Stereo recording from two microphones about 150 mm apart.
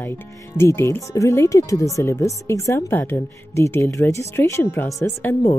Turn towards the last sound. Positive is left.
turn(degrees=15)  # may be behind; listen again after turning